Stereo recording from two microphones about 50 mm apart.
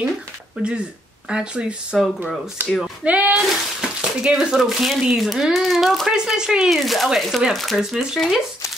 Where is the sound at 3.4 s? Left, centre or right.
Centre.